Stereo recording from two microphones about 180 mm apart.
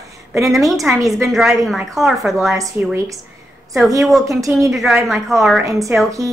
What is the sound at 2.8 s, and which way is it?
Speech, 10° right (ahead or behind).